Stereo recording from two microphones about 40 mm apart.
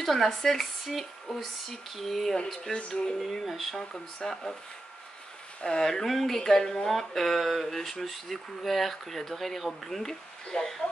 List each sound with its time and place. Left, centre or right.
0.0 s speech: centre
2.9 s speech: centre
5.6 s speech: left
5.9 s speech: centre